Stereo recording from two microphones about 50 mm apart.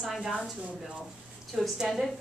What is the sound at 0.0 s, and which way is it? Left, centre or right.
Speech, centre.